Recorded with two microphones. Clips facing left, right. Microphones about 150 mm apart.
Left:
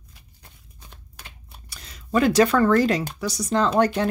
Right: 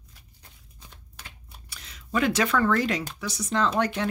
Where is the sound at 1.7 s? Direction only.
40° left (ahead or behind).